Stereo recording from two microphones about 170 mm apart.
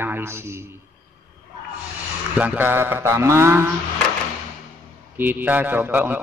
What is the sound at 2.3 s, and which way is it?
A man's voice, 10° right (ahead or behind).